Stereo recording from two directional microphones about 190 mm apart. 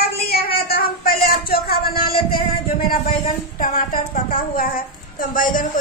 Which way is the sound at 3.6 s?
50° left (ahead or behind).